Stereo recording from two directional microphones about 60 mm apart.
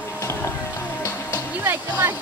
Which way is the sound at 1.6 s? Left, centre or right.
Right.